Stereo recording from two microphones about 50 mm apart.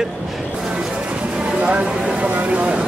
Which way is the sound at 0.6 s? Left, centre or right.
Centre.